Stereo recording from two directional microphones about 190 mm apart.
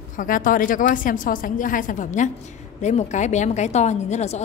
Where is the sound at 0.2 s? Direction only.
45° left (ahead or behind).